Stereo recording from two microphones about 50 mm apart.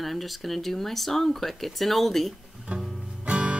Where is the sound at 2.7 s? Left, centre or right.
Centre.